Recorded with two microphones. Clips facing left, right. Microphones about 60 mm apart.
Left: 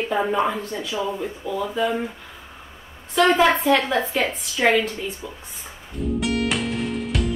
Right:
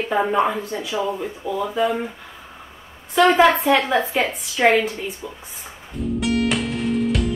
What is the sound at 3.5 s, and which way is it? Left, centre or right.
A woman's voice, centre.